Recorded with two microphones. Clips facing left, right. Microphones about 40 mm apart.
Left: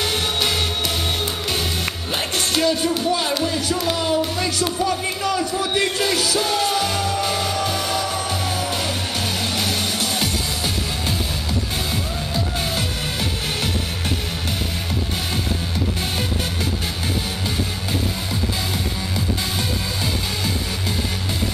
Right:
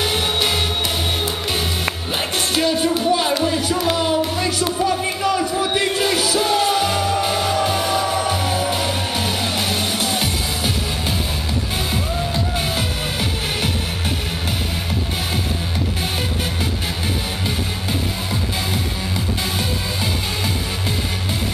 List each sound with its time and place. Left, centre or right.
0.0 s music: centre
2.3 s music: centre